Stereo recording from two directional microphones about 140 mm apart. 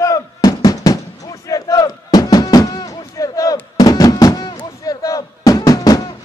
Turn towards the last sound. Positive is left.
turn(degrees=25)  # may be behind; listen again after turning